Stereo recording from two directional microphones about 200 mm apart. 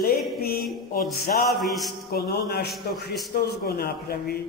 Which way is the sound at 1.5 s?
Centre (ahead or behind).